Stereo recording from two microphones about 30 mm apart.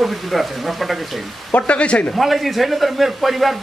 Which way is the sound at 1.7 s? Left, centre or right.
Left.